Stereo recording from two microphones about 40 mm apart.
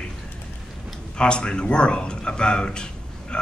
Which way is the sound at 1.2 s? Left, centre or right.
Left.